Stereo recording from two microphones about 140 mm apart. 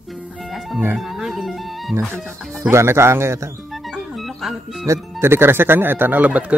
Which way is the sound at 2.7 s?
20° right (ahead or behind).